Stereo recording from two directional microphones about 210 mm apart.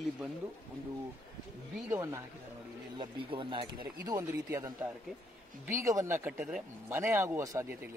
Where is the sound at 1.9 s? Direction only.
15° right (ahead or behind).